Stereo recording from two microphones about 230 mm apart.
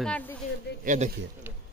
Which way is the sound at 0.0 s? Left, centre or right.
Centre.